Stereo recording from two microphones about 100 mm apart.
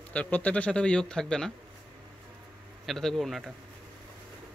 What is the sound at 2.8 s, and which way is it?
Speech, centre (ahead or behind).